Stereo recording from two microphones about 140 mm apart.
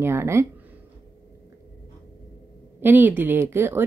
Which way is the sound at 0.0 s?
20° right (ahead or behind).